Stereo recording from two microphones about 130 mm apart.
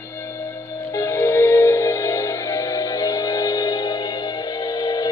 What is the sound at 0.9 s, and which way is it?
Music, 20° left (ahead or behind).